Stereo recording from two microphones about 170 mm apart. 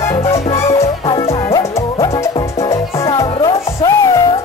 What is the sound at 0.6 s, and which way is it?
Music, 35° left (ahead or behind).